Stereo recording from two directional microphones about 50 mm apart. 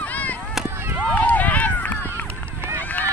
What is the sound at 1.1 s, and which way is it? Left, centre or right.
Run, left.